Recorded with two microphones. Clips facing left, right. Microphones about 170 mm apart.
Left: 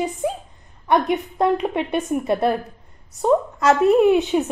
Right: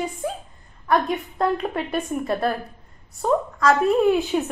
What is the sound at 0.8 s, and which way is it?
A woman's voice, 20° left (ahead or behind).